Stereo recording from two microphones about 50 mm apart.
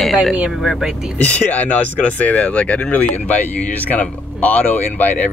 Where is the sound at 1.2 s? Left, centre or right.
Left.